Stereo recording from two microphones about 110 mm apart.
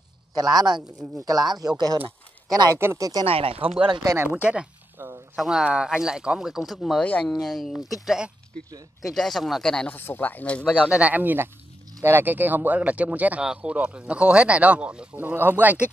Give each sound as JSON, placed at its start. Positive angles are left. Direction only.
{"t": 0.4, "sound": "speech", "side_deg": -35}
{"t": 2.5, "sound": "speech", "side_deg": -35}
{"t": 2.8, "sound": "speech", "side_deg": -25}
{"t": 3.3, "sound": "speech", "side_deg": -60}
{"t": 3.8, "sound": "speech", "side_deg": -45}
{"t": 4.3, "sound": "speech", "side_deg": -10}
{"t": 5.0, "sound": "a sound", "side_deg": -25}
{"t": 5.3, "sound": "speech", "side_deg": -5}
{"t": 9.9, "sound": "speech", "side_deg": 20}
{"t": 10.9, "sound": "speech", "side_deg": -10}